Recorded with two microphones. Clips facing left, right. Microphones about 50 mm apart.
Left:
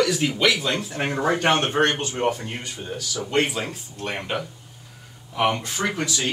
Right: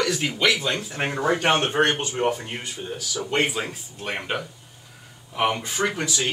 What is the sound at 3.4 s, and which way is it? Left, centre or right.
A man's voice, centre.